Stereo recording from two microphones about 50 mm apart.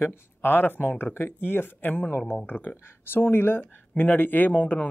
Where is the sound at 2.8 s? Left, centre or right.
Left.